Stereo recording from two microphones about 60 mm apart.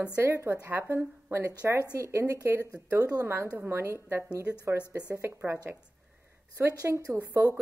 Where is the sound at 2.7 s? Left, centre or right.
Centre.